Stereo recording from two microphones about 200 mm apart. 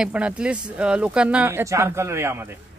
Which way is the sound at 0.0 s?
5° right (ahead or behind).